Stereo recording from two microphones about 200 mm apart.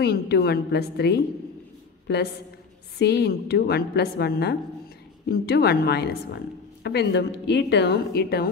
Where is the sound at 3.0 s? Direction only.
55° left (ahead or behind).